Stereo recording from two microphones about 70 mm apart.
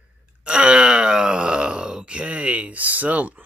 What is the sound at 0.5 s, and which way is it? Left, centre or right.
Speech, centre.